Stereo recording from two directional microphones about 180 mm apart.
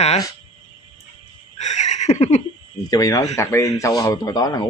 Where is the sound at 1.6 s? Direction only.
40° left (ahead or behind).